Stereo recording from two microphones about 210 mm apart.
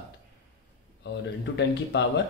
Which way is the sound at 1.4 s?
55° left (ahead or behind).